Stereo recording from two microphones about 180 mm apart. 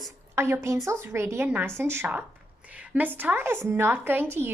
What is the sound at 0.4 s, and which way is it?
A woman's voice, 15° right (ahead or behind).